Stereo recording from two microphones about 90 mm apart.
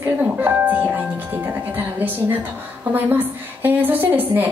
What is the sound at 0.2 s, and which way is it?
Music, 20° right (ahead or behind).